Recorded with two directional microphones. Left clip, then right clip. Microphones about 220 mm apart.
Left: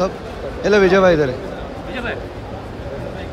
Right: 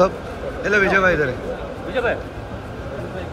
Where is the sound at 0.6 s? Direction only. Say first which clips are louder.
Left 4 dB; 20° left (ahead or behind).